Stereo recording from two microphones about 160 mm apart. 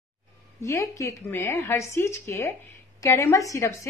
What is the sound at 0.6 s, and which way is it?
A woman's voice, 20° left (ahead or behind).